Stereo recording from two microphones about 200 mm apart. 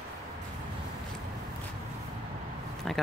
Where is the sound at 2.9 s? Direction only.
Centre (ahead or behind).